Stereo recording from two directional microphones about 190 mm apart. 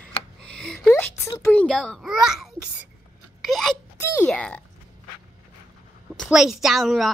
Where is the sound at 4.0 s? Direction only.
10° left (ahead or behind).